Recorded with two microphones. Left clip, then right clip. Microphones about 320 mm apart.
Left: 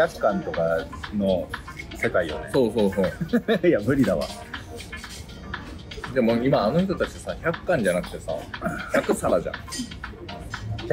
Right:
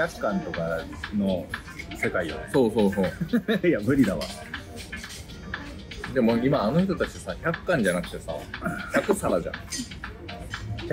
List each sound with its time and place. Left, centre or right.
0.0 s speech: centre
5.9 s speech: centre